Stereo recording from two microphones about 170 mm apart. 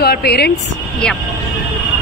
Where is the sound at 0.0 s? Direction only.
65° left (ahead or behind).